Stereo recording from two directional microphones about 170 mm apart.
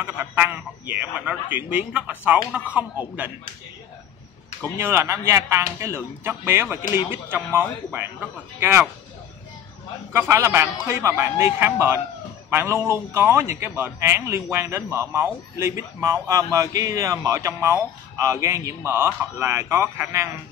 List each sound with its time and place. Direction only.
0.0 s a man's voice: 10° right (ahead or behind)
4.7 s a man's voice: 15° right (ahead or behind)
10.1 s a man's voice: 15° right (ahead or behind)